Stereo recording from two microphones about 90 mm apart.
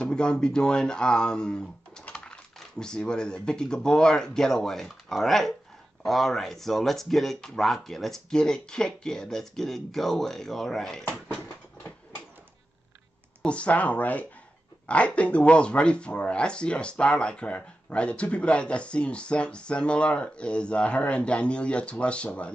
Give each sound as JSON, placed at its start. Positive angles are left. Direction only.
{"t": 0.0, "sound": "speech", "side_deg": 10}
{"t": 13.4, "sound": "speech", "side_deg": 15}